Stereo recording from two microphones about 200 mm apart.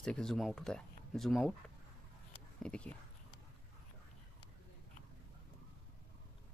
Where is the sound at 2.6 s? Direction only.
5° left (ahead or behind).